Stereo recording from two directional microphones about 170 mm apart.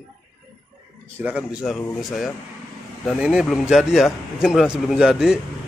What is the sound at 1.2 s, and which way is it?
A man's voice, 5° right (ahead or behind).